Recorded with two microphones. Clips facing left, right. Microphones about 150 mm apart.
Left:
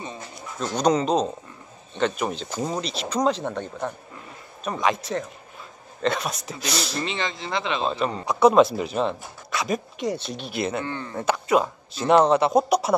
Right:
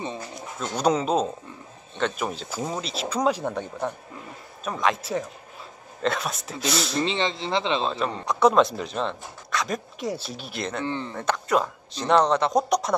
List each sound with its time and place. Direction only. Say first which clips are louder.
0.6 s speech: left 2 dB; 5° right (ahead or behind)
7.0 s speech: right 3 dB; 30° right (ahead or behind)
7.8 s speech: left 2 dB; centre (ahead or behind)
10.9 s speech: right 2 dB; 25° right (ahead or behind)
11.1 s speech: left 4 dB; 5° left (ahead or behind)